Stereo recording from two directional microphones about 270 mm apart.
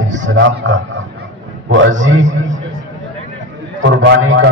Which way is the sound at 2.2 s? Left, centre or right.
Right.